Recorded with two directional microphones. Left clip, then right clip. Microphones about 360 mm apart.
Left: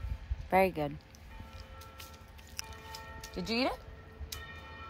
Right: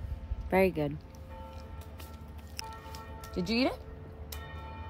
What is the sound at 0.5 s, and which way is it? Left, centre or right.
Speech, centre.